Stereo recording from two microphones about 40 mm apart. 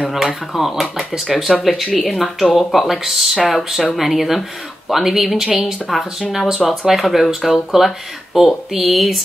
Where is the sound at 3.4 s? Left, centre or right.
Centre.